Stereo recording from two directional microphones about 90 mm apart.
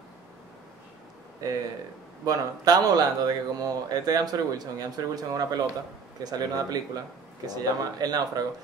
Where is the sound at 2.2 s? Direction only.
45° right (ahead or behind).